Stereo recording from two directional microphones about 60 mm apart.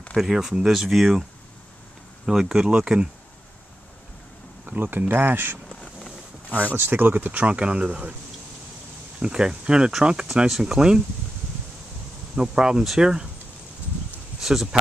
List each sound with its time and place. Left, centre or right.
0.2 s speech: centre
2.2 s speech: centre
4.6 s speech: right
4.9 s speech: right
5.7 s a sound: centre
6.8 s speech: right
9.2 s speech: centre
12.4 s speech: centre
14.4 s speech: centre